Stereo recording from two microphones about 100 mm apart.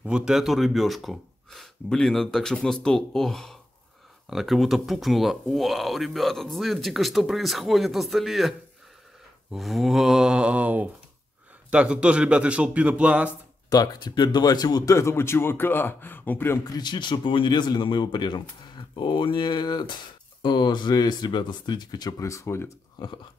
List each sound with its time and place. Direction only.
0.0 s a man's voice: 5° right (ahead or behind)
13.7 s speech: 45° left (ahead or behind); by 16.5 s 20° left (ahead or behind)
16.6 s speech: 45° left (ahead or behind)
22.2 s speech: 30° left (ahead or behind)
22.9 s a sound: 45° left (ahead or behind)